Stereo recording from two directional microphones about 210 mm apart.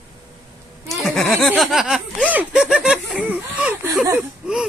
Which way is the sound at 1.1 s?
Centre (ahead or behind).